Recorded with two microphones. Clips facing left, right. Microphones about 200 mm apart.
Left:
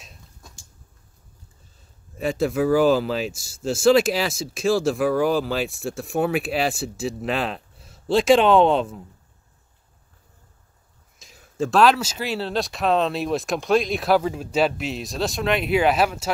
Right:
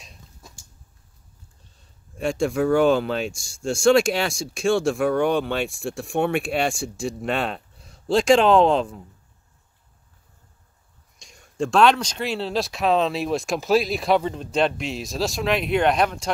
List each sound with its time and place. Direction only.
0.0 s a sound: centre (ahead or behind)
1.6 s speech: centre (ahead or behind)
11.1 s speech: centre (ahead or behind)